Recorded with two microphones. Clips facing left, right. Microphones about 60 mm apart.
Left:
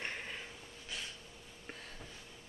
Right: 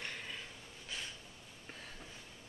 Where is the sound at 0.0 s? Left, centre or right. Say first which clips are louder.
Left 2 dB; left.